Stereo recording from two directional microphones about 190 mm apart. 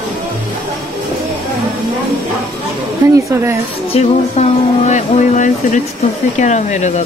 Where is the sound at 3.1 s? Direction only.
15° right (ahead or behind).